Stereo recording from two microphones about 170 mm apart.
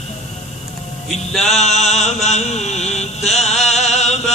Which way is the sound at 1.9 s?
40° left (ahead or behind).